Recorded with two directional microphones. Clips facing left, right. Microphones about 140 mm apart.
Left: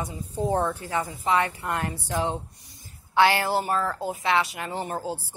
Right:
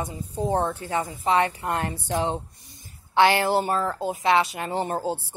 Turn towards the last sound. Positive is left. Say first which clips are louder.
# right 4 dB
turn(degrees=-30)  # may be behind; listen again after turning